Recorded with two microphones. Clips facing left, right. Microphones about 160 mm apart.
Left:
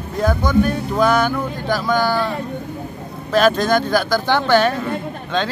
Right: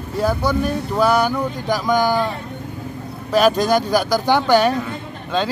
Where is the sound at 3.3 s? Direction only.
10° right (ahead or behind).